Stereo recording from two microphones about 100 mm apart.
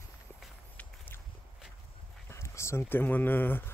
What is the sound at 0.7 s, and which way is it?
Walk, 20° left (ahead or behind).